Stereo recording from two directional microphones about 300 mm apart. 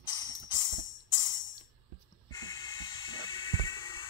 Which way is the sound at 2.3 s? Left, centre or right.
Centre.